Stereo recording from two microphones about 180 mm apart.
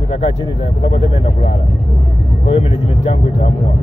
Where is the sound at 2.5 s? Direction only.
30° left (ahead or behind).